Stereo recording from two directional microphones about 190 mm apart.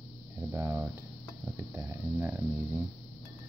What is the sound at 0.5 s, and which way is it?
Speech, 10° right (ahead or behind).